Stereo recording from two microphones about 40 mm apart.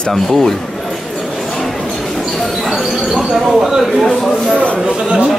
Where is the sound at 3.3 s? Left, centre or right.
Centre.